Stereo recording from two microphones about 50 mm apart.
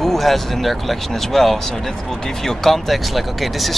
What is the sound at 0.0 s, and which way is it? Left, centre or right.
Speech, centre.